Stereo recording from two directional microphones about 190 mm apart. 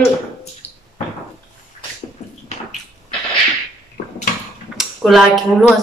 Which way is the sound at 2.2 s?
35° left (ahead or behind).